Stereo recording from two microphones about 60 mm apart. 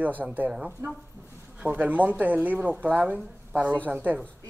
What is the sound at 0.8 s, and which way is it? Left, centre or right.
Speech, right.